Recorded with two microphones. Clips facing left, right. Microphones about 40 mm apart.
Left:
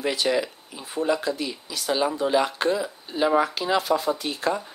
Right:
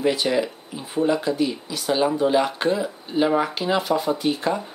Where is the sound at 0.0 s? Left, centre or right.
Right.